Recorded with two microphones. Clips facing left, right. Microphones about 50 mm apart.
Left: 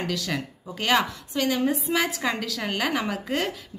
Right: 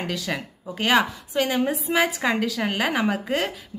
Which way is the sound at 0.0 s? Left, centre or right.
Centre.